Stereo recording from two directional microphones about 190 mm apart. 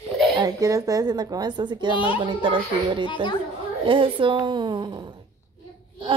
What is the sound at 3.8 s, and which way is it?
A woman's voice, 25° right (ahead or behind).